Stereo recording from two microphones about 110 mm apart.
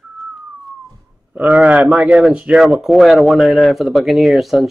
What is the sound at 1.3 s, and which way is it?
Speech, 15° right (ahead or behind).